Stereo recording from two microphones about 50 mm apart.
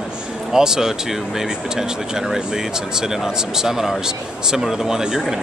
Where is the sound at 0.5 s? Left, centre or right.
Centre.